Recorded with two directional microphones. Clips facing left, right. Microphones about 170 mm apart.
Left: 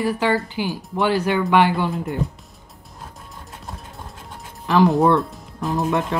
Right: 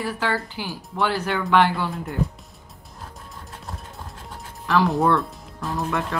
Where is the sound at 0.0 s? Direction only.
15° left (ahead or behind).